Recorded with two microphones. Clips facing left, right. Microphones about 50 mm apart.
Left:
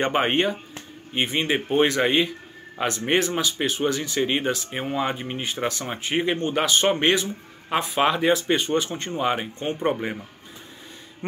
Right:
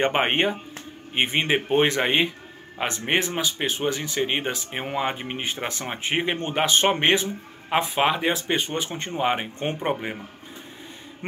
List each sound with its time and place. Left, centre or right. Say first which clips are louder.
0.0 s speech: even; right